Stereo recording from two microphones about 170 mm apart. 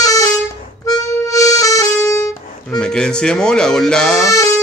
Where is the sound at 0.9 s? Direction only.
20° left (ahead or behind).